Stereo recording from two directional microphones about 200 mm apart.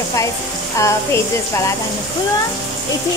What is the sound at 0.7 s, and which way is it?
Speech, 15° left (ahead or behind).